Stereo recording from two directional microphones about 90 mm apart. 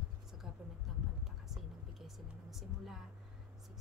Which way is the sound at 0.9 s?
Centre (ahead or behind).